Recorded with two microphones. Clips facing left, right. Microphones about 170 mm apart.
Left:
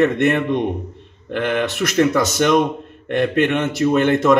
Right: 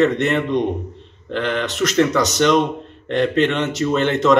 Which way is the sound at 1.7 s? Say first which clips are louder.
Right 1 dB; 50° left (ahead or behind).